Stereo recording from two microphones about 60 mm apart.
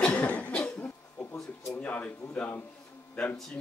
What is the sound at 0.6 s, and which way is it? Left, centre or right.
Cough, left.